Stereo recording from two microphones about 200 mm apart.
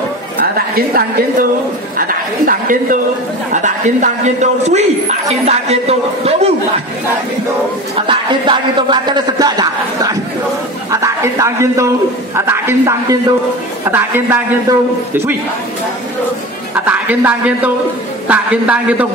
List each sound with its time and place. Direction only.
0.6 s speech: 50° right (ahead or behind); by 6.5 s 30° right (ahead or behind)
7.9 s a man's voice: 25° right (ahead or behind)
16.7 s a man's voice: 10° right (ahead or behind)